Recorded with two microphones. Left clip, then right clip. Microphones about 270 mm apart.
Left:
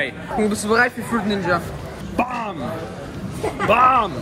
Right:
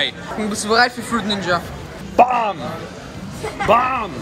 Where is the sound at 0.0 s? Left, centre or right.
Centre.